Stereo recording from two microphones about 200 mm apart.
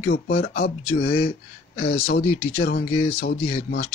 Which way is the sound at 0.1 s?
55° left (ahead or behind).